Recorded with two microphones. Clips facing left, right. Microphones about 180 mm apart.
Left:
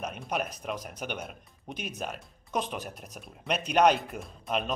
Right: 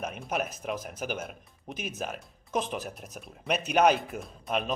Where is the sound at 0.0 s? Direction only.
Centre (ahead or behind).